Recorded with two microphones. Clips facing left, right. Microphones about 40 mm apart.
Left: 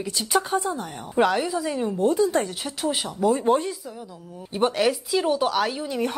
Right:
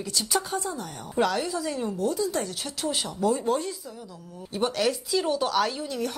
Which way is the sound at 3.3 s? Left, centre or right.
Left.